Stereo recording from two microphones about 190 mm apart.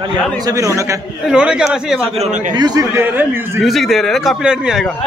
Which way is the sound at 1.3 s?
5° right (ahead or behind).